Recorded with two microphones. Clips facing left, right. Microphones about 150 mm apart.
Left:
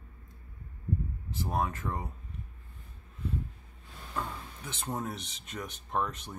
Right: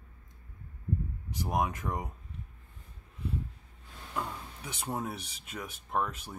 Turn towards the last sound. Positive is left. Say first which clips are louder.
# even
turn(degrees=-5)  # may be behind; listen again after turning